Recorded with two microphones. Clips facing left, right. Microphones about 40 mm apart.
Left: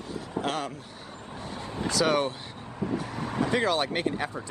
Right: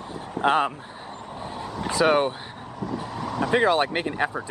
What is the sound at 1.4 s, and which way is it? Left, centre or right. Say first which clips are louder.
Vehicle: right 4 dB; centre.